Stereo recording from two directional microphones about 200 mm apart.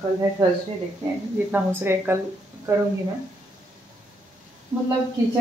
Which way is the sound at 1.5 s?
10° right (ahead or behind).